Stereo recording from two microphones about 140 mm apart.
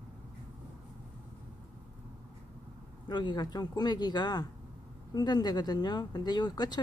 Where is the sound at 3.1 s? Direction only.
30° left (ahead or behind).